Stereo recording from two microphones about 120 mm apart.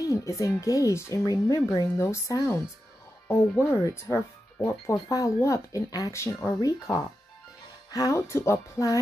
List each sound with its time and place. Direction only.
0.0 s speech: 25° left (ahead or behind)
3.8 s speech: 25° left (ahead or behind)